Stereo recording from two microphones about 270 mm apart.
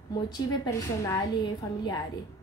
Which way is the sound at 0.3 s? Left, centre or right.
Centre.